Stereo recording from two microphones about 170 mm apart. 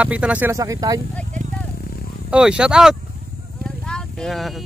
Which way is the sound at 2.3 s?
5° right (ahead or behind).